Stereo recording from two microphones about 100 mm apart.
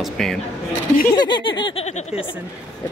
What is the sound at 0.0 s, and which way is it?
Speech, 5° left (ahead or behind).